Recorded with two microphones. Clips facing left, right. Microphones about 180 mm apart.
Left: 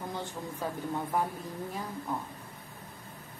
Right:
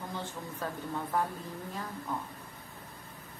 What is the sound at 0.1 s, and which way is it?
Speech, 15° left (ahead or behind).